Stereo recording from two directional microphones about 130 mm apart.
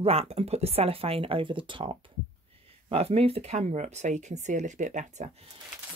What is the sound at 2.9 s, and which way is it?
Speech, 50° right (ahead or behind).